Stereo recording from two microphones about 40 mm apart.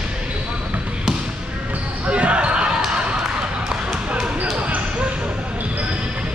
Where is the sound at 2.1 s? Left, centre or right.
Right; by 4.3 s centre.